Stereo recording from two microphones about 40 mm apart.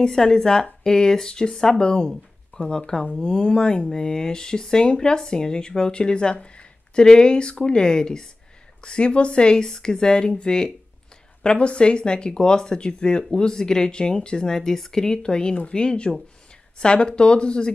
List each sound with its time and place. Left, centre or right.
0.0 s speech: centre
6.4 s a sound: left
7.1 s speech: left